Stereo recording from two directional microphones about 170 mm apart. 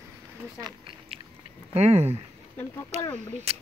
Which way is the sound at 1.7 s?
40° right (ahead or behind).